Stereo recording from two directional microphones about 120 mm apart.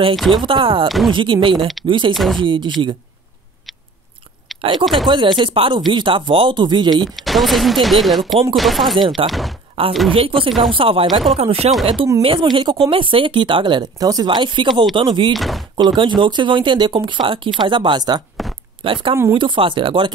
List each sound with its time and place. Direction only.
0.1 s speech: centre (ahead or behind)
0.5 s speech: 45° right (ahead or behind)
0.8 s speech: centre (ahead or behind)
1.1 s speech: 45° right (ahead or behind)
2.1 s speech: centre (ahead or behind)
2.4 s speech: 45° right (ahead or behind)
4.7 s speech: centre (ahead or behind)
5.0 s speech: 40° right (ahead or behind)
7.2 s speech: centre (ahead or behind)
8.9 s speech: 45° right (ahead or behind)
11.3 s speech: 60° right (ahead or behind); by 15.3 s 45° right (ahead or behind)
15.3 s speech: centre (ahead or behind)
15.7 s speech: 40° right (ahead or behind)